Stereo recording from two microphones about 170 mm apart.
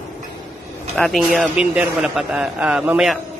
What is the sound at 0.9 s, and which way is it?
Speech, centre (ahead or behind).